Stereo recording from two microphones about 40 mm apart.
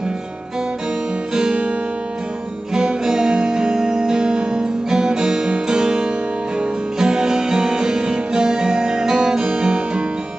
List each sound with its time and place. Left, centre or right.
1.3 s guitar: right
2.7 s music: centre